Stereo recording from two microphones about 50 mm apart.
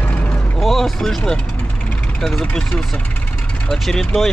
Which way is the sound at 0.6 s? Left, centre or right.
Centre.